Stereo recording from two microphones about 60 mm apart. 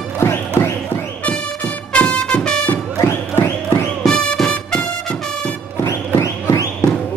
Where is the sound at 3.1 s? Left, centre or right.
Left.